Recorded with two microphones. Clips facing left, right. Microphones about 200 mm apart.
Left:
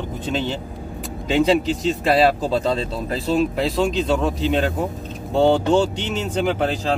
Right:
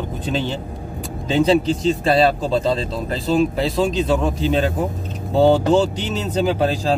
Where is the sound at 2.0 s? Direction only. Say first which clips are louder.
Left 1 dB; 5° left (ahead or behind).